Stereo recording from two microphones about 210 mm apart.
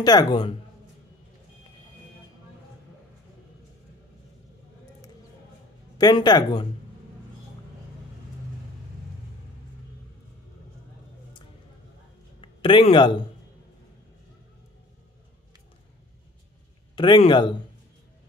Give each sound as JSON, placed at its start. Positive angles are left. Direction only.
{"t": 0.0, "sound": "speech", "side_deg": 20}
{"t": 5.9, "sound": "speech", "side_deg": 20}
{"t": 12.4, "sound": "speech", "side_deg": 25}
{"t": 16.9, "sound": "speech", "side_deg": 20}